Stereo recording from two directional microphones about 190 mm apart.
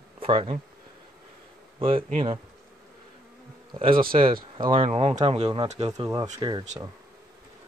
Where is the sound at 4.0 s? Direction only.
30° right (ahead or behind).